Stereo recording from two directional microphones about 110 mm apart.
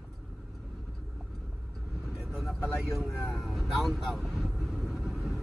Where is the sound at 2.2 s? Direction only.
Centre (ahead or behind).